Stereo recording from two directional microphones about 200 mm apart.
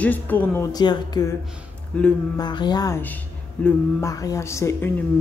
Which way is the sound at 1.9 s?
5° left (ahead or behind).